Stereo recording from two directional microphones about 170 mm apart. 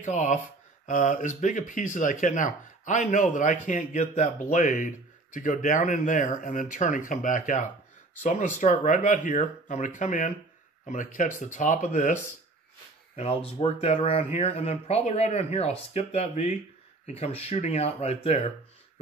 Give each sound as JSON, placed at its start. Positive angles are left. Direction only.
{"t": 0.0, "sound": "speech", "side_deg": 45}
{"t": 13.1, "sound": "speech", "side_deg": 35}